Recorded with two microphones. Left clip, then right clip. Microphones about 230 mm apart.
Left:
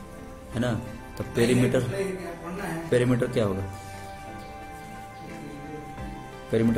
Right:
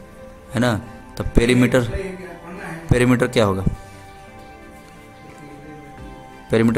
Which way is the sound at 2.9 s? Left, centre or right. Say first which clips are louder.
Right 6 dB; right.